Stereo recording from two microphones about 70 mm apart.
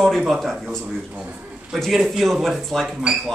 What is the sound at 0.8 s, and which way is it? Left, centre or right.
Speech, centre.